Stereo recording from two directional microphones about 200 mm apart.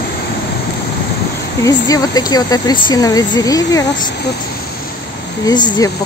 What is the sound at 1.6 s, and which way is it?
Speech, 20° left (ahead or behind).